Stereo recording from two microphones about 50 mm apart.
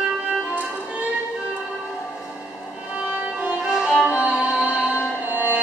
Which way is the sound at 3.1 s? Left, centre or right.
Right.